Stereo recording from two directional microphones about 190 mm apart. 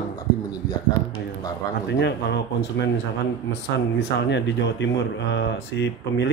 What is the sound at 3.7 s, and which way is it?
Speech, 65° left (ahead or behind).